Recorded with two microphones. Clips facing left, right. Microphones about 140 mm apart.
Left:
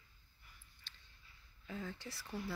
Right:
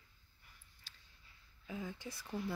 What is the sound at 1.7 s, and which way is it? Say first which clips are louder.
Speech: right 1 dB; 10° right (ahead or behind).